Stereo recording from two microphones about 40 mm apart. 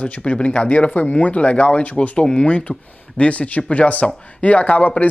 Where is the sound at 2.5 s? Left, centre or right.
Left.